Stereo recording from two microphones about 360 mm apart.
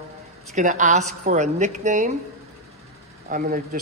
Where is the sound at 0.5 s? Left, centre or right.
Centre.